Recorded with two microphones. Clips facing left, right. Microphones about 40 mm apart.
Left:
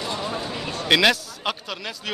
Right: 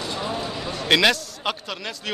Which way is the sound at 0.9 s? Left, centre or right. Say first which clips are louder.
Even; centre.